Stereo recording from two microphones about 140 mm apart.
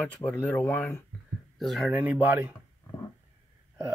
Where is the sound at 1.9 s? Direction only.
10° right (ahead or behind).